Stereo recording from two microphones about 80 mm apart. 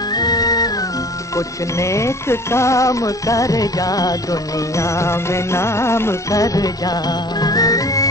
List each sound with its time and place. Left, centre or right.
0.1 s music: left
1.3 s music: left
6.4 s music: left